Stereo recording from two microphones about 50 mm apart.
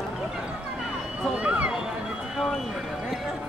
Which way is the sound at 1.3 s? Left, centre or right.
Right.